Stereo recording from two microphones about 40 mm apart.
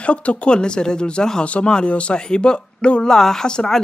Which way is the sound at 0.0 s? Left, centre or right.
Left.